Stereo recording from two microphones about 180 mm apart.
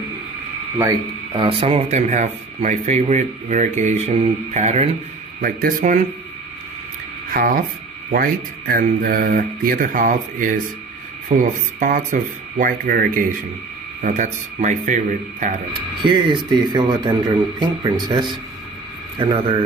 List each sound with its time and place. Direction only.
0.7 s speech: 20° right (ahead or behind)
1.4 s speech: 30° right (ahead or behind)
5.4 s speech: 50° right (ahead or behind)
7.2 s speech: 55° right (ahead or behind)
16.0 s a man's voice: 25° right (ahead or behind)